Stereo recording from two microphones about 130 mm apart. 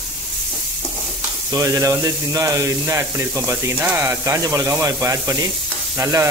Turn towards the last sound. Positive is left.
turn(degrees=-20)  # may be behind; listen again after turning